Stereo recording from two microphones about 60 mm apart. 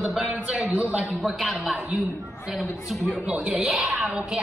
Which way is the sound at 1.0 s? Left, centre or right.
Centre.